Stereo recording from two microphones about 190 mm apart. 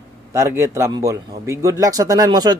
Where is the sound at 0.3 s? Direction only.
15° right (ahead or behind).